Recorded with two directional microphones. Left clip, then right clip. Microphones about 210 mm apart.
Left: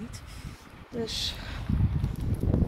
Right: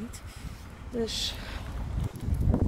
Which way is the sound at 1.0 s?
15° right (ahead or behind).